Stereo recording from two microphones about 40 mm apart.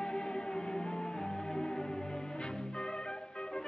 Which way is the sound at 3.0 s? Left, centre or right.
Centre.